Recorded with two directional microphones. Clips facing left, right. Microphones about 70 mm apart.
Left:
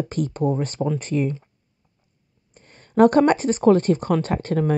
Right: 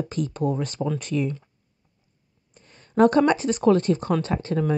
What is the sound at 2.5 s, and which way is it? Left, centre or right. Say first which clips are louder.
Speech: left 3 dB; left.